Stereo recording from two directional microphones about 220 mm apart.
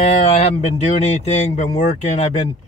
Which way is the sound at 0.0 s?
30° left (ahead or behind).